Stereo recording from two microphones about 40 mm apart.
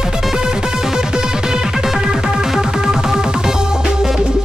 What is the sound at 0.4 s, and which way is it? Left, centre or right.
Music, centre.